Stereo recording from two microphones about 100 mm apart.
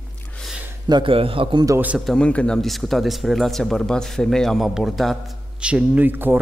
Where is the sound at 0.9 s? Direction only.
65° right (ahead or behind).